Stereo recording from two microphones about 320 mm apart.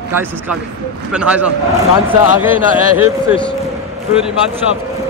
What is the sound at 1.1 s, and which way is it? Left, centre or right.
Speech, centre.